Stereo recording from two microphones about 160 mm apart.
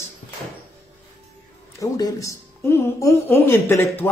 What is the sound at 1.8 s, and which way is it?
A woman's voice, 20° left (ahead or behind).